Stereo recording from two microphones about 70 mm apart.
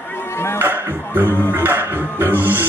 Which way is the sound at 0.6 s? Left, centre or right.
Right.